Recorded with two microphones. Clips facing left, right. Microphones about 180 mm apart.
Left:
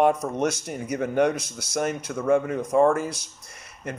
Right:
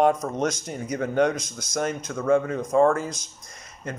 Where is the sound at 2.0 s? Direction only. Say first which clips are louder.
Right 1 dB; 10° left (ahead or behind).